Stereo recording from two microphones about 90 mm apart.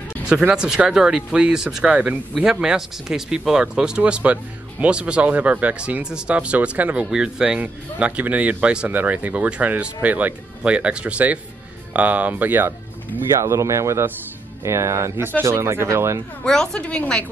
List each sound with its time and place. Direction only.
0.3 s speech: 10° right (ahead or behind)
13.4 s speech: 35° right (ahead or behind)
16.4 s a woman's voice: 10° left (ahead or behind)